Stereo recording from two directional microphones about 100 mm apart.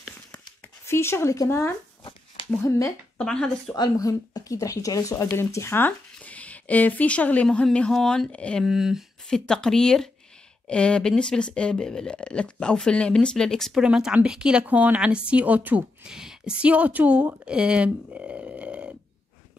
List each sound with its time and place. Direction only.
0.8 s speech: 25° left (ahead or behind)
3.2 s speech: 10° left (ahead or behind)
3.7 s speech: 40° left (ahead or behind); by 8.6 s 10° left (ahead or behind)
8.6 s speech: 5° right (ahead or behind)
9.3 s speech: 5° left (ahead or behind)
13.8 s speech: 10° right (ahead or behind)